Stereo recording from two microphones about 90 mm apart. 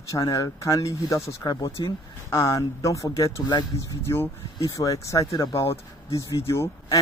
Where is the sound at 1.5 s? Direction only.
50° left (ahead or behind).